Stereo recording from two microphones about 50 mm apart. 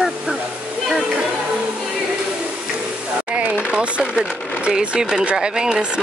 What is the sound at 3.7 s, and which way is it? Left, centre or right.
Speech, centre.